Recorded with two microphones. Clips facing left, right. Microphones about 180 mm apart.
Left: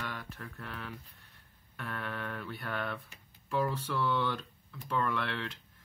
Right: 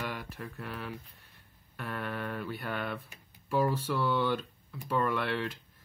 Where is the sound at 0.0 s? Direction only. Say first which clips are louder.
Right 4 dB; 10° right (ahead or behind).